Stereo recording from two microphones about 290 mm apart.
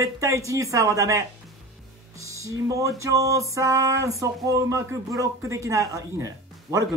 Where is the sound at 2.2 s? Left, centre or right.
Centre.